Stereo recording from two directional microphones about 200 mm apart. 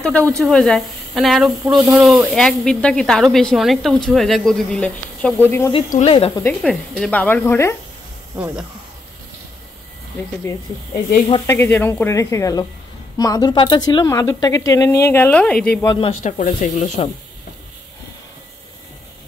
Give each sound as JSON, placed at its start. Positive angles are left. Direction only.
{"t": 0.0, "sound": "speech", "side_deg": 5}
{"t": 5.9, "sound": "speech", "side_deg": 40}
{"t": 6.1, "sound": "speech", "side_deg": 25}
{"t": 6.4, "sound": "a woman's voice", "side_deg": 0}
{"t": 11.2, "sound": "a woman's voice", "side_deg": 15}
{"t": 15.9, "sound": "speech", "side_deg": 30}